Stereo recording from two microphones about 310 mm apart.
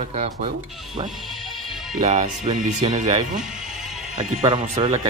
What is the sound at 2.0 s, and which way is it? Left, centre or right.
Speech, right.